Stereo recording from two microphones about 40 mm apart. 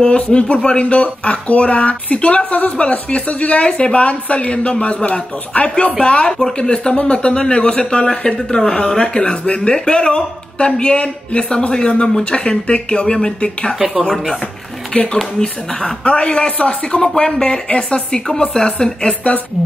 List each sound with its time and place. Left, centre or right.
0.0 s speech: left
0.8 s speech: left
5.9 s speech: left
13.7 s speech: centre
14.0 s speech: centre
14.9 s speech: left